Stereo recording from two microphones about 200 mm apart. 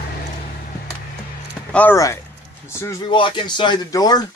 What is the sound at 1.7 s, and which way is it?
Speech, 10° left (ahead or behind).